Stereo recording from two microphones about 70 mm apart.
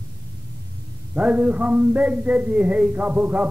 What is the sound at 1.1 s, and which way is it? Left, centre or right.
A man's voice, centre.